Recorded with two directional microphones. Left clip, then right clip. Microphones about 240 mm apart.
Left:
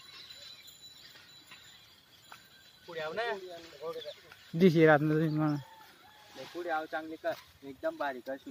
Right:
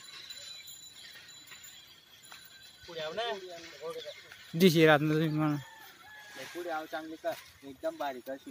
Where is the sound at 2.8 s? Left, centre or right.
Centre.